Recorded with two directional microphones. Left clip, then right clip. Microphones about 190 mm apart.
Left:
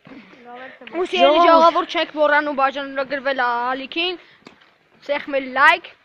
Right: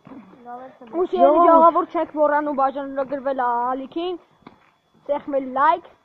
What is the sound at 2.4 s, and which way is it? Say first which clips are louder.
Speech: left 2 dB; 40° left (ahead or behind).